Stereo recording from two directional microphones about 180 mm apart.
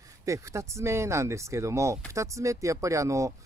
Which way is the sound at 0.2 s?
15° right (ahead or behind).